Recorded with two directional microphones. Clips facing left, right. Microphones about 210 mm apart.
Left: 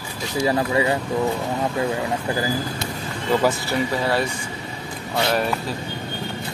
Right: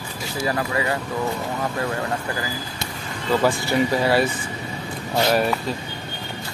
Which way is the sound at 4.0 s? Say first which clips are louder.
Right 3 dB; 5° right (ahead or behind).